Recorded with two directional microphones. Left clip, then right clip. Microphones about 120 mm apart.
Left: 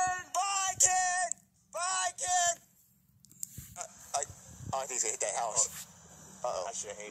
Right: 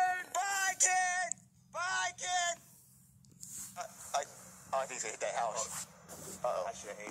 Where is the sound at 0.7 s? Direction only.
15° left (ahead or behind).